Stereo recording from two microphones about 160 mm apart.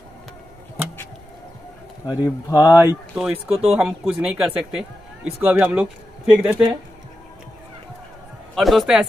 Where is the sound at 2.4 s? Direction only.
20° left (ahead or behind).